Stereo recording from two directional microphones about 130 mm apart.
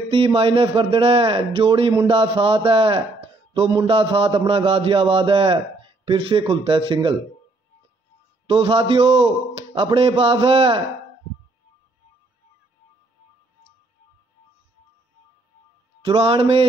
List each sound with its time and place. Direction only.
0.1 s speech: 45° right (ahead or behind)
8.5 s speech: 40° right (ahead or behind)
16.2 s speech: 45° right (ahead or behind)